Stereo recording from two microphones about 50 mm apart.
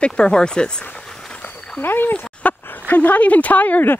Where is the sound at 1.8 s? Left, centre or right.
Left.